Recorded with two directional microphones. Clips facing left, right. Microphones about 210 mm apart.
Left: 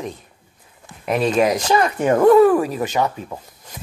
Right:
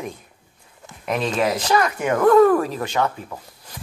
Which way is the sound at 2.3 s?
15° left (ahead or behind).